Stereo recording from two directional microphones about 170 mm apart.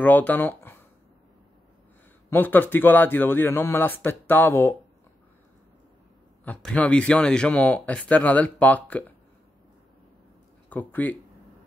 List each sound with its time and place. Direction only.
0.0 s speech: 10° left (ahead or behind)
2.2 s speech: 10° left (ahead or behind)
6.4 s speech: 10° left (ahead or behind)
10.7 s speech: 10° left (ahead or behind)